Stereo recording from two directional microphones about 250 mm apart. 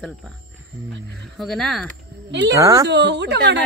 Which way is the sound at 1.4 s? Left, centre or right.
Centre.